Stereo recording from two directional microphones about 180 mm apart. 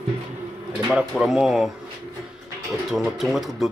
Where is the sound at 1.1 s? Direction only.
Centre (ahead or behind).